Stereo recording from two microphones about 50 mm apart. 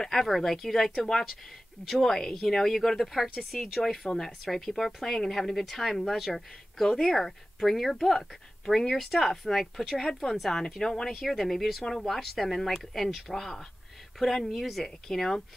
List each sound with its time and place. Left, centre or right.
0.0 s speech: centre